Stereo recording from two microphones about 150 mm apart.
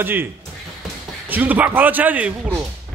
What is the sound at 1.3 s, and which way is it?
A man's voice, 10° right (ahead or behind).